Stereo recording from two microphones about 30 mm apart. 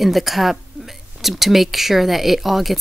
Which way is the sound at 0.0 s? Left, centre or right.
Centre.